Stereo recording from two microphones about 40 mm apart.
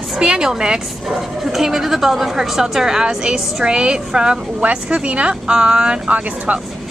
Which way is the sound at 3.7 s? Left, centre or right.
Right.